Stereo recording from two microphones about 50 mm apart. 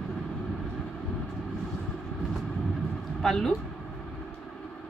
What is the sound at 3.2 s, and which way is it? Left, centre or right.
Speech, centre.